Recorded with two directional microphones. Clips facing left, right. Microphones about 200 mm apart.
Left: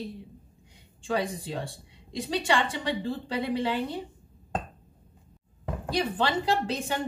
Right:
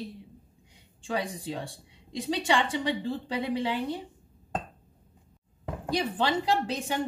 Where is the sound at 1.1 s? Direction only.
20° right (ahead or behind).